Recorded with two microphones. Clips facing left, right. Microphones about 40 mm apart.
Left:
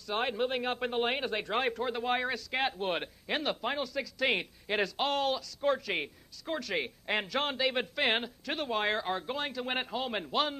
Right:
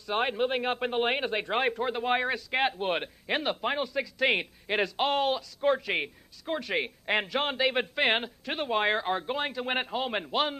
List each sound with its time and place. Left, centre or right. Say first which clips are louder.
0.0 s speech: right 4 dB; right